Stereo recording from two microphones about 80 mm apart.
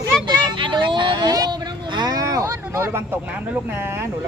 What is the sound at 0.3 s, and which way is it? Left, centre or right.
Vehicle, right.